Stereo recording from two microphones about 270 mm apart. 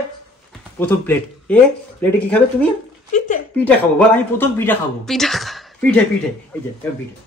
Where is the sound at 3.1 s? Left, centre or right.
Left.